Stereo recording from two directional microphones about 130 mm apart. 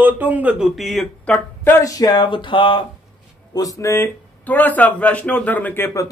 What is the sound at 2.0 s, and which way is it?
Speech, 35° left (ahead or behind).